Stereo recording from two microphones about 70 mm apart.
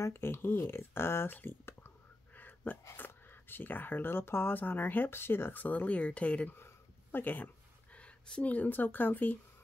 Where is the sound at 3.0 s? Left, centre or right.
Left.